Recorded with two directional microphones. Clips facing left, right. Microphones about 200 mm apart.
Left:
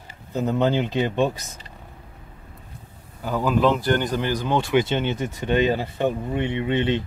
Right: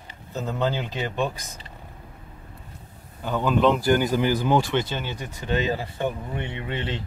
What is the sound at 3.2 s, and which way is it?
Speech, 5° left (ahead or behind).